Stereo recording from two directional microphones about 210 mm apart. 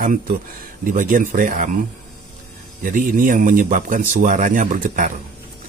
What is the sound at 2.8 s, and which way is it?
A man's voice, 40° right (ahead or behind).